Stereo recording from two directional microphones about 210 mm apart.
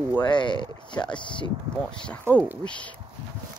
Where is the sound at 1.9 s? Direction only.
5° left (ahead or behind).